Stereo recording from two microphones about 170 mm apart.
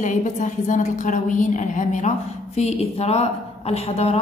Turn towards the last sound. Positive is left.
turn(degrees=35)  # may be behind; listen again after turning